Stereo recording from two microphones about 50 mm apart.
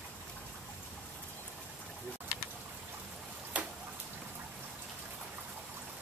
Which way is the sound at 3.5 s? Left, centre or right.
Right.